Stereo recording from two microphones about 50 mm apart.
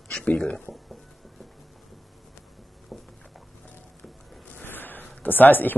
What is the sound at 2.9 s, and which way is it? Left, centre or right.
Patter, centre.